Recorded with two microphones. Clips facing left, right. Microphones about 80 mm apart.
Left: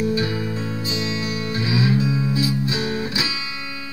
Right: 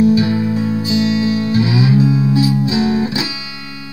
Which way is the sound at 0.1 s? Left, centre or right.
Centre.